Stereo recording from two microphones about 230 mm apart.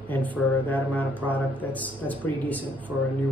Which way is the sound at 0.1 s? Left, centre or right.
Centre.